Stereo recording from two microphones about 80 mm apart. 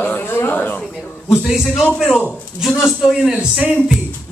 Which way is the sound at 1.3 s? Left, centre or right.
Centre.